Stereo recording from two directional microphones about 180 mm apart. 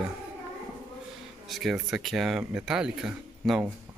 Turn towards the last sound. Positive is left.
turn(degrees=0)  # may be behind; listen again after turning